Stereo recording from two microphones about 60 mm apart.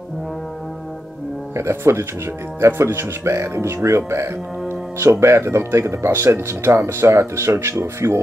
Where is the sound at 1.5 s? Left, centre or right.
Right.